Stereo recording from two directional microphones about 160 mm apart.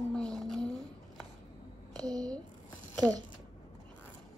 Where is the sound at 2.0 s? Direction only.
25° right (ahead or behind).